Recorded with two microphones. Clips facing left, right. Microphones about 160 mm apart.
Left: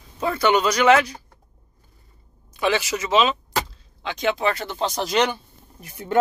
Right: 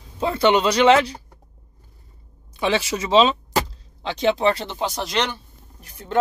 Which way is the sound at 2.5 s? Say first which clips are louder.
Even; 25° right (ahead or behind).